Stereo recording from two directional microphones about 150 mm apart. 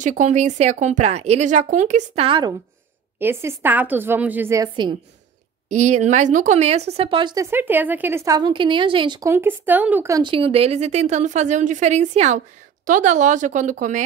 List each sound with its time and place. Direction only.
0.0 s a woman's voice: 55° right (ahead or behind)
2.2 s a woman's voice: 35° right (ahead or behind)
3.2 s a woman's voice: 15° right (ahead or behind)
5.7 s a woman's voice: 50° right (ahead or behind); by 7.4 s 30° right (ahead or behind)
7.4 s a woman's voice: 15° right (ahead or behind); by 9.3 s 30° right (ahead or behind)
9.3 s a woman's voice: 15° right (ahead or behind)
10.1 s a woman's voice: 35° right (ahead or behind); by 14.0 s 55° right (ahead or behind)